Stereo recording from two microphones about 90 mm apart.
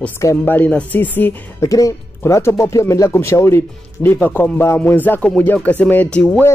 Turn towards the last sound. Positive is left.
turn(degrees=15)  # may be behind; listen again after turning